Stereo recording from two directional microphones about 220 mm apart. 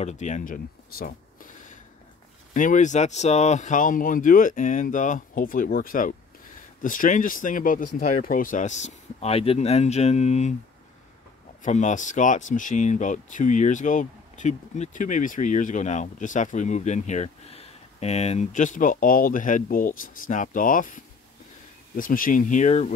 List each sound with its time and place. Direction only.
0.0 s speech: 30° left (ahead or behind)
11.6 s speech: 35° left (ahead or behind)